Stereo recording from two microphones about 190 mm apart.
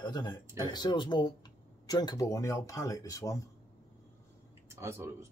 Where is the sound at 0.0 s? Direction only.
20° left (ahead or behind).